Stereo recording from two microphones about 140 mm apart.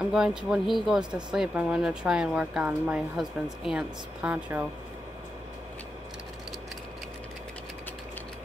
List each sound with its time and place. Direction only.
0.0 s speech: 5° right (ahead or behind)